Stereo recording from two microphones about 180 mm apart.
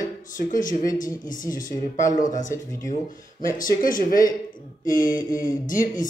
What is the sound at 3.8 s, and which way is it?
Speech, 50° left (ahead or behind).